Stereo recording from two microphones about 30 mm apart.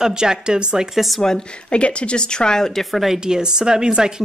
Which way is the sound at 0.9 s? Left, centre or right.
Centre.